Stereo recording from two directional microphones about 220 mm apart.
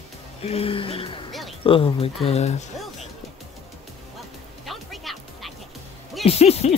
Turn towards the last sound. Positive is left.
turn(degrees=30)  # may be behind; listen again after turning